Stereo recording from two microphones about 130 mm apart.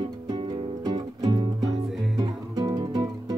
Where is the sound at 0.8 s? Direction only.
30° right (ahead or behind).